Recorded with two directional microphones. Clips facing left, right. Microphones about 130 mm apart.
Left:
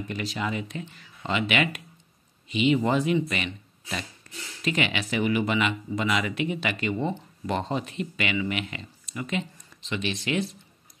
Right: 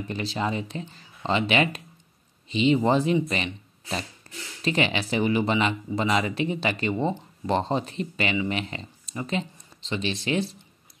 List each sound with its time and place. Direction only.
0.1 s speech: 30° right (ahead or behind)
4.2 s a sound: 30° right (ahead or behind)
4.6 s speech: 35° right (ahead or behind)